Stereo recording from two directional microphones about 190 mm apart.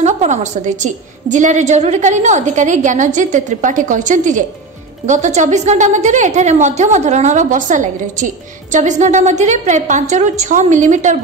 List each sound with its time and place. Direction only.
0.0 s a woman's voice: 40° right (ahead or behind)